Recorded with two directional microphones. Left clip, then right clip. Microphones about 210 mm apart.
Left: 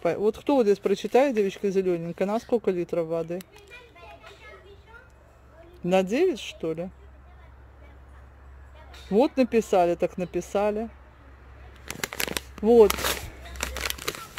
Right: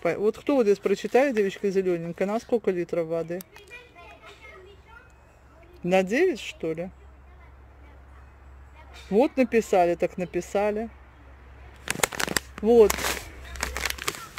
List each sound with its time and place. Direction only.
0.0 s speech: centre (ahead or behind)
5.8 s speech: 5° left (ahead or behind)
9.1 s speech: 5° left (ahead or behind)
12.3 s a sound: 25° right (ahead or behind)
12.6 s speech: 5° left (ahead or behind)
13.7 s a sound: 15° right (ahead or behind)